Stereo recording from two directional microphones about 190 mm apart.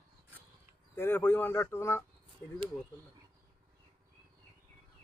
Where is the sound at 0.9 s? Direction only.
10° left (ahead or behind).